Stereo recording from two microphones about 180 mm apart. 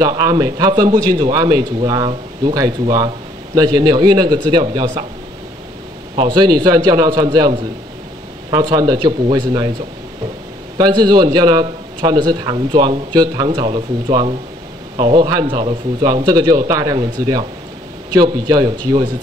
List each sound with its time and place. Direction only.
0.0 s a man's voice: 20° right (ahead or behind)
6.1 s a man's voice: 25° right (ahead or behind)
10.8 s a man's voice: 25° right (ahead or behind)